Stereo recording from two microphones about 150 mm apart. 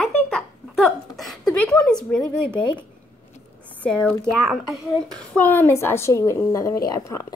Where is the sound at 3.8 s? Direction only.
10° left (ahead or behind).